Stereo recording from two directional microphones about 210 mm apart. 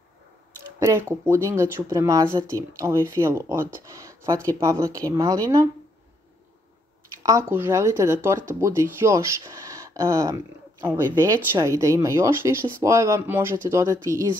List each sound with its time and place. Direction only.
0.7 s speech: 10° right (ahead or behind)
7.2 s speech: 15° right (ahead or behind)